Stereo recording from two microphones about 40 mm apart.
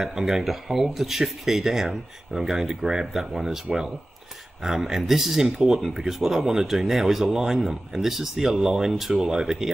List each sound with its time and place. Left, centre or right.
0.0 s speech: centre
4.6 s speech: centre